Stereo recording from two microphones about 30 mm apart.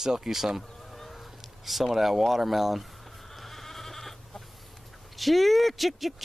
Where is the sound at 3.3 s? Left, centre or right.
Centre.